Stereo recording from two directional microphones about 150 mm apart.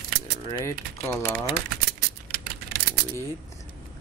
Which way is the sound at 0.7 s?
15° left (ahead or behind).